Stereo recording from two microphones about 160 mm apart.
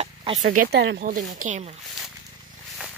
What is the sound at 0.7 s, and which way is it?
Speech, 75° right (ahead or behind).